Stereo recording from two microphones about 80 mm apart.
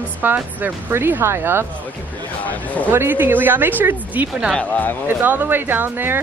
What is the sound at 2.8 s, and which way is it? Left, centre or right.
A woman's voice, right.